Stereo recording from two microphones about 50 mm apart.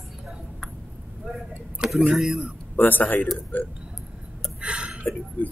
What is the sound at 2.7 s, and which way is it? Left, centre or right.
Speech, left.